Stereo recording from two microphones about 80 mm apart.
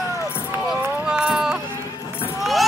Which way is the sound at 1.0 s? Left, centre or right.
Centre.